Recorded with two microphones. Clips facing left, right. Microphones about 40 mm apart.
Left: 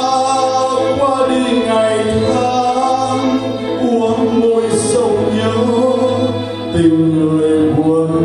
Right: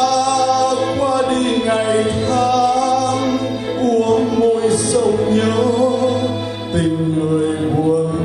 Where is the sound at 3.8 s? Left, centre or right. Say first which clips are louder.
Left 1 dB; left.